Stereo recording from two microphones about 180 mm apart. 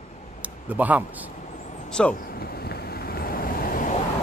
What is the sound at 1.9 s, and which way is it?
Speech, 5° left (ahead or behind).